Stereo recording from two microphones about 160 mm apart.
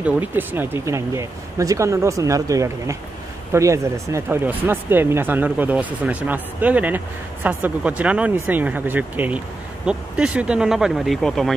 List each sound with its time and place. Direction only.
0.0 s speech: 10° right (ahead or behind)